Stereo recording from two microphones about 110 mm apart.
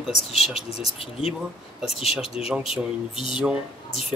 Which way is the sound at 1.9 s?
65° left (ahead or behind).